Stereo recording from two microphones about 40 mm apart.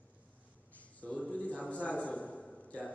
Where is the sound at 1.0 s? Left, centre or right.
Left.